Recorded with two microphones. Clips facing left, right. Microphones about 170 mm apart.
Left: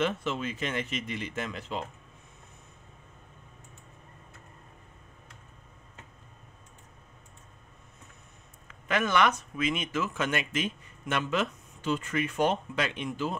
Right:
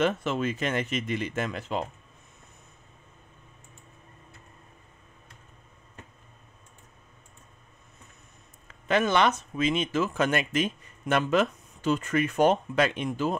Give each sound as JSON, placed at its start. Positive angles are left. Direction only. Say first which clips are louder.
{"t": 0.0, "sound": "speech", "louder": "right 4 dB", "side_deg": -45}
{"t": 8.6, "sound": "speech", "louder": "right 4 dB", "side_deg": -30}